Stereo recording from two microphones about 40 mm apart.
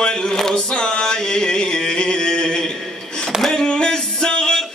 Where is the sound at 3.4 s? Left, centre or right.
Centre.